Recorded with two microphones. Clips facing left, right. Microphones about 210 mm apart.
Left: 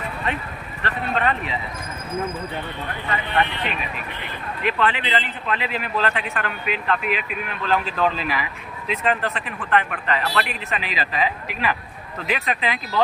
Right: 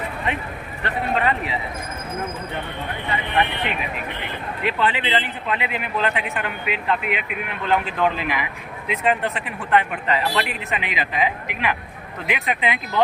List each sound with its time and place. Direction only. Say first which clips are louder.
1.1 s speech: right 1 dB; 15° right (ahead or behind)
3.1 s speech: even; 15° right (ahead or behind)
4.7 s speech: right 1 dB; 25° right (ahead or behind)